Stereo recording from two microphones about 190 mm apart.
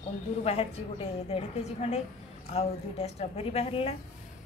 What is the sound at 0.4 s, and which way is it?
A woman's voice, 30° left (ahead or behind).